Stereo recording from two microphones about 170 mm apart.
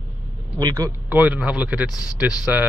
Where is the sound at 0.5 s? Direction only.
20° right (ahead or behind).